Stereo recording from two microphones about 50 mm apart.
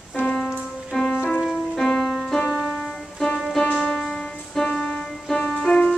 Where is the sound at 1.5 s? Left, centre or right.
Centre.